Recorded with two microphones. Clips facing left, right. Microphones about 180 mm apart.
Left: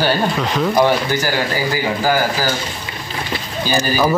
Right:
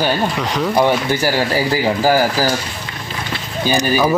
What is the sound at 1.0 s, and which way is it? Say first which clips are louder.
Speech: right 2 dB; 35° right (ahead or behind).